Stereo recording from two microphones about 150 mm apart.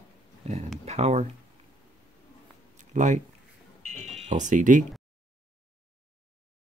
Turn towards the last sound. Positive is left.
turn(degrees=-60)  # may be behind; listen again after turning